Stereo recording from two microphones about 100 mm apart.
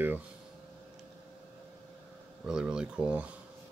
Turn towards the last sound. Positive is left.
turn(degrees=-10)  # may be behind; listen again after turning